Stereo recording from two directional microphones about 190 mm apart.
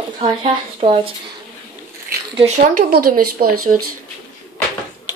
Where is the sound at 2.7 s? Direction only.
45° right (ahead or behind).